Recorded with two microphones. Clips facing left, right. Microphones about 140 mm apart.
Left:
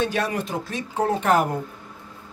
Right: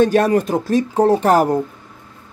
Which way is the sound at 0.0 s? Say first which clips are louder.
Right 10 dB; 45° right (ahead or behind).